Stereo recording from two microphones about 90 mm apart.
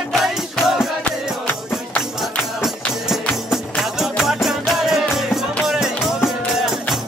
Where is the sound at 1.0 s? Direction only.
15° left (ahead or behind).